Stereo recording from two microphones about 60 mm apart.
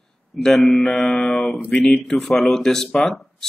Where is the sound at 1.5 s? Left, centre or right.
Left.